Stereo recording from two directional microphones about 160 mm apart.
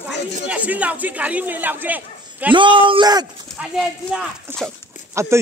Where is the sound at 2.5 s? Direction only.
30° right (ahead or behind).